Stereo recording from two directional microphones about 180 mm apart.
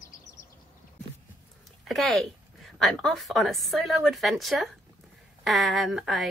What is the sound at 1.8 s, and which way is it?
Speech, centre (ahead or behind).